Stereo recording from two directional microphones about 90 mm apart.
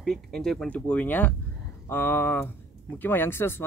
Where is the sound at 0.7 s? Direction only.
15° left (ahead or behind).